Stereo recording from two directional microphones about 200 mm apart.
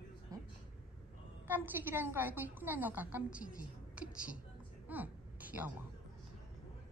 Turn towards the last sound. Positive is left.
turn(degrees=-10)  # may be behind; listen again after turning